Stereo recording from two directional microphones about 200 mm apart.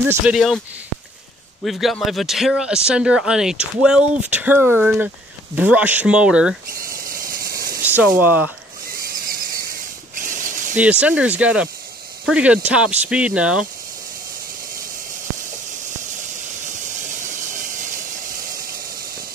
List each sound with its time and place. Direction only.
0.1 s speech: 5° right (ahead or behind)
1.6 s speech: centre (ahead or behind)
6.7 s a sound: 45° right (ahead or behind)
7.8 s speech: 10° right (ahead or behind)
8.9 s a sound: 45° right (ahead or behind)
10.1 s ratchet: 40° right (ahead or behind)
10.8 s speech: 5° right (ahead or behind)
16.6 s hiss: 40° right (ahead or behind)